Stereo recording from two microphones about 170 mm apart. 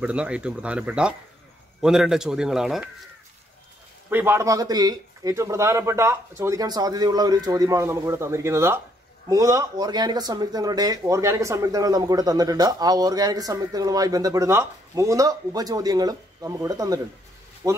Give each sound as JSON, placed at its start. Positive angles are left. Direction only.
{"t": 0.0, "sound": "a man's voice", "side_deg": -5}
{"t": 4.1, "sound": "a man's voice", "side_deg": -15}